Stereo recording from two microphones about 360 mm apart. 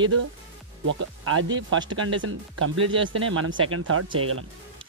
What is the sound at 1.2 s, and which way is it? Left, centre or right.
Speech, right.